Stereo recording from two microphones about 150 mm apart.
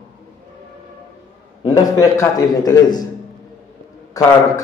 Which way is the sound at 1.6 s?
25° left (ahead or behind).